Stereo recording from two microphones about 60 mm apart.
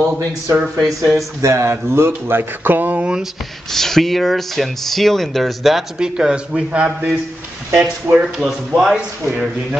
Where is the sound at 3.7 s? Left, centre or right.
Centre.